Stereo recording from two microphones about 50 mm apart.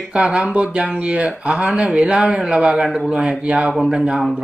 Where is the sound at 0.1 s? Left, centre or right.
Right.